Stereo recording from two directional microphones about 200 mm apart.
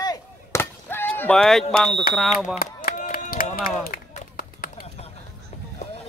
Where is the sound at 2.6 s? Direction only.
40° left (ahead or behind).